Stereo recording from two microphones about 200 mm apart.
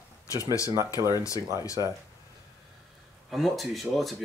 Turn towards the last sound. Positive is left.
turn(degrees=0)  # may be behind; listen again after turning